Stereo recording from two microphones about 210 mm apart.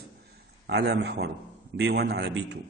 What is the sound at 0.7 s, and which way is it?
A man's voice, 50° right (ahead or behind).